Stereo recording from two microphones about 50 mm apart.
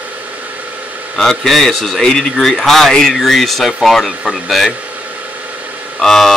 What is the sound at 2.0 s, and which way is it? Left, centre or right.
Speech, centre.